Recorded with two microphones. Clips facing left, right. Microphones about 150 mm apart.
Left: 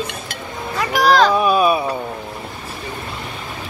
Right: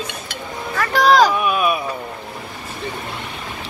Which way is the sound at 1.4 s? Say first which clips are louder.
Left 4 dB; 30° left (ahead or behind).